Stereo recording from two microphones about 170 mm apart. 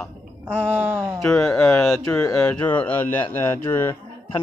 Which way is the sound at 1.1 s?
5° left (ahead or behind).